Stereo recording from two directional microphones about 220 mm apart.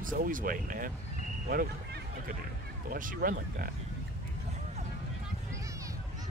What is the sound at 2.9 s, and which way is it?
Speech, 40° right (ahead or behind).